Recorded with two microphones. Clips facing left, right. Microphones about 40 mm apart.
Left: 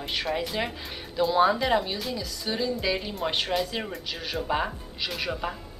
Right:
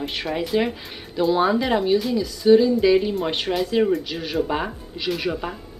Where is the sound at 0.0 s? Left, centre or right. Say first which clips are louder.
Right 3 dB; centre.